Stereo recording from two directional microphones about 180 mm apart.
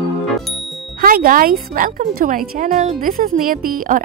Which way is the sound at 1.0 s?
50° right (ahead or behind).